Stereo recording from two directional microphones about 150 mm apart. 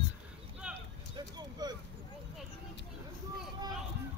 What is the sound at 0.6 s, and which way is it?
Clip-clop, 5° right (ahead or behind).